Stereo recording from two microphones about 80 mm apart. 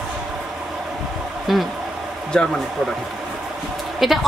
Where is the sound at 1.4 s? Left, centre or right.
Centre.